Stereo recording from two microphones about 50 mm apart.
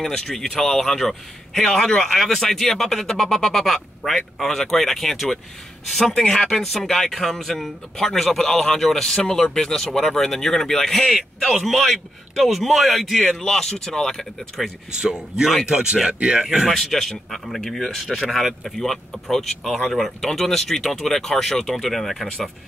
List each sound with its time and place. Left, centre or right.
0.0 s speech: centre
15.0 s a man's voice: centre
16.4 s a man's voice: centre
16.7 s speech: centre